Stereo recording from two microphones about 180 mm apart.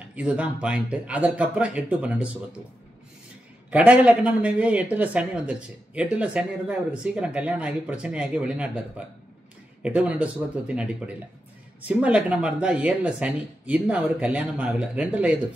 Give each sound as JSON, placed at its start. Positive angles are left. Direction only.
{"t": 0.1, "sound": "speech", "side_deg": -5}
{"t": 3.7, "sound": "speech", "side_deg": -5}